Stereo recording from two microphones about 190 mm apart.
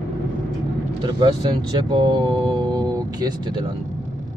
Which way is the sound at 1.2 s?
25° right (ahead or behind).